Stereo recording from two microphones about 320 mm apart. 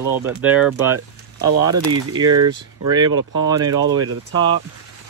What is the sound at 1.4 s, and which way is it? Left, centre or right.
Speech, right.